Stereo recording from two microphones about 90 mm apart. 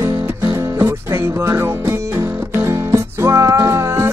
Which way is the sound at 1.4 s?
30° right (ahead or behind).